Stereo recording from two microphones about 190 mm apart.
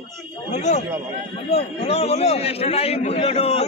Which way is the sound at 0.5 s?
35° left (ahead or behind).